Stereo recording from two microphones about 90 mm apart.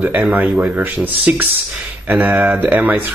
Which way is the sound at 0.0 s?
20° right (ahead or behind).